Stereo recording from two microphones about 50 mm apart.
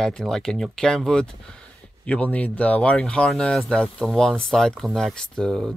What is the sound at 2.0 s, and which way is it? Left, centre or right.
Speech, left.